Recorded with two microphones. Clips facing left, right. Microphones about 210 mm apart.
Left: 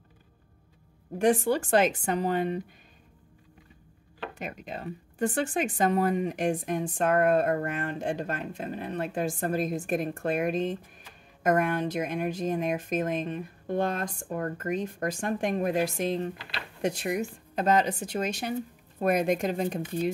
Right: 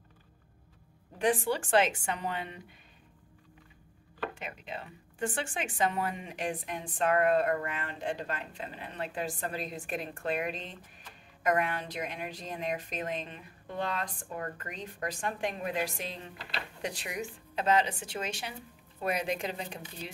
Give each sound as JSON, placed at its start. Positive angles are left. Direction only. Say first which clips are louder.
{"t": 1.1, "sound": "a woman's voice", "louder": "left 5 dB", "side_deg": 45}
{"t": 4.4, "sound": "speech", "louder": "left 5 dB", "side_deg": 45}